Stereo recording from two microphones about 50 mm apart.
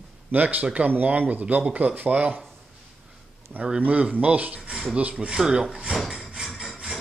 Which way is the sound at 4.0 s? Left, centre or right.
Right.